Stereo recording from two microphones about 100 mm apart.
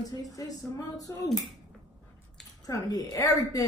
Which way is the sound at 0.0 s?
40° left (ahead or behind).